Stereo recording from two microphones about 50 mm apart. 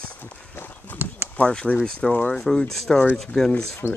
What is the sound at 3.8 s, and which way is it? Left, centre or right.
Speech, left.